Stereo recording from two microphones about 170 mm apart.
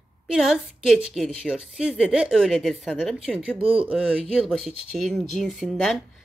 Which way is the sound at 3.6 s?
30° right (ahead or behind).